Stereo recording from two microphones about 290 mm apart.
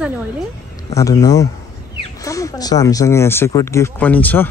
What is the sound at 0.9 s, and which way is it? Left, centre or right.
Speech, centre.